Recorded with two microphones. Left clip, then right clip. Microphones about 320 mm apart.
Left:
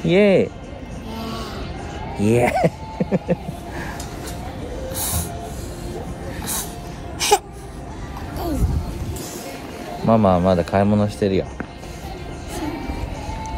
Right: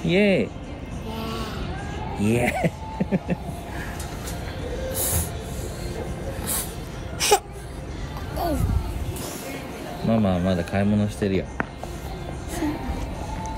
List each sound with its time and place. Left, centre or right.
0.0 s speech: left
1.1 s vehicle: centre
2.2 s speech: left
4.9 s a sound: centre
7.2 s baby cry: centre
10.0 s speech: centre